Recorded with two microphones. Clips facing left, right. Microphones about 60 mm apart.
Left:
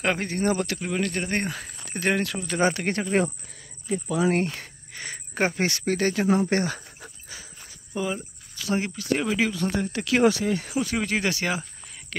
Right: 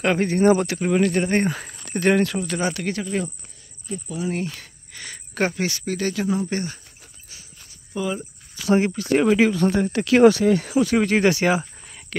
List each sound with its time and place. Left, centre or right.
0.0 s speech: centre
0.4 s speech: centre
1.9 s speech: centre
2.6 s speech: left
3.1 s speech: left
4.5 s cricket: left
5.6 s speech: left
6.5 s speech: left
7.9 s speech: left
8.5 s speech: right
10.2 s speech: right
11.0 s speech: right
11.2 s speech: right
12.1 s speech: centre